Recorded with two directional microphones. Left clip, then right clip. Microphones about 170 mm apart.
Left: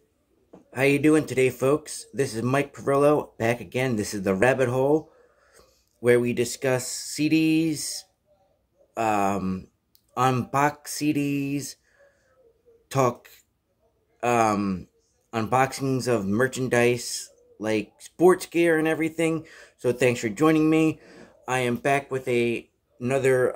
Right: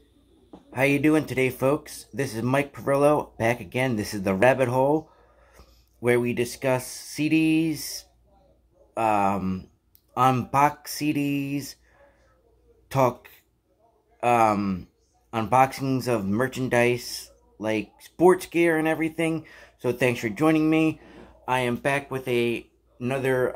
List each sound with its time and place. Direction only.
0.7 s speech: 10° left (ahead or behind)
13.0 s speech: 20° left (ahead or behind)
14.2 s speech: 15° left (ahead or behind)